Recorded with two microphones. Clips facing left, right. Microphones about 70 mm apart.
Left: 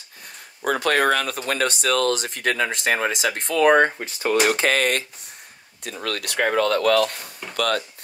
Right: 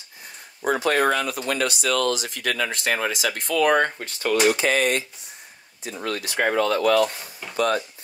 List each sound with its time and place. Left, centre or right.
0.7 s speech: left
2.5 s speech: left
4.5 s speech: left
5.9 s speech: left
6.7 s speech: centre
7.5 s speech: left